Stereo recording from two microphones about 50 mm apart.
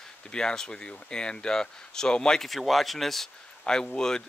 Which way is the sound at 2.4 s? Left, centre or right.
Centre.